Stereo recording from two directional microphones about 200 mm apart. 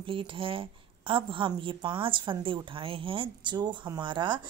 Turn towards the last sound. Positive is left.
turn(degrees=-25)  # may be behind; listen again after turning